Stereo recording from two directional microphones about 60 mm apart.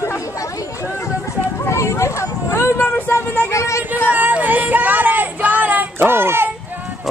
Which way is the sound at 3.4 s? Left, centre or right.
Left.